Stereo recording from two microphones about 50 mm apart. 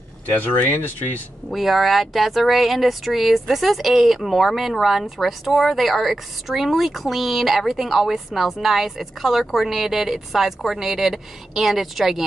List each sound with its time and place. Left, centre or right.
0.3 s speech: left
1.5 s speech: centre